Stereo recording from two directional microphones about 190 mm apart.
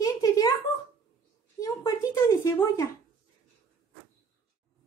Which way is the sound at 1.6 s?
15° left (ahead or behind).